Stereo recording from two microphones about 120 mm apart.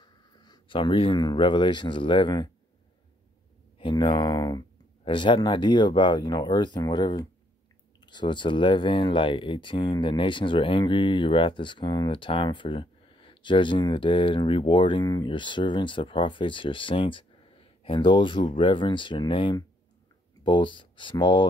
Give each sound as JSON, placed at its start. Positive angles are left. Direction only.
{"t": 0.0, "sound": "a sound", "side_deg": 40}
{"t": 1.1, "sound": "speech", "side_deg": 35}
{"t": 3.7, "sound": "speech", "side_deg": 45}